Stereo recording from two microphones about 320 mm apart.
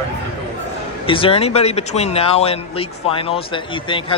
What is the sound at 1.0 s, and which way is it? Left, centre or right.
Speech, centre.